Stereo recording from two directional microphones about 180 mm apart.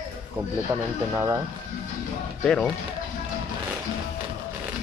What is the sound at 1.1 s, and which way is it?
Speech, 15° right (ahead or behind).